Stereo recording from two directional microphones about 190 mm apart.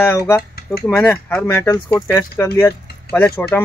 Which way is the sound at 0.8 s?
10° left (ahead or behind).